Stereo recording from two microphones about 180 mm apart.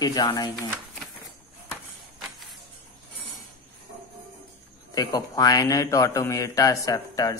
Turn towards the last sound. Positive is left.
turn(degrees=20)  # may be behind; listen again after turning